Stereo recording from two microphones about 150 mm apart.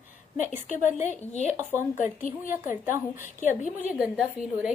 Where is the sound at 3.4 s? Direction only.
55° left (ahead or behind).